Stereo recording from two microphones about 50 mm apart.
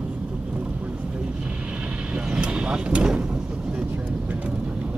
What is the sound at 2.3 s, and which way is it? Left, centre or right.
Vehicle, right.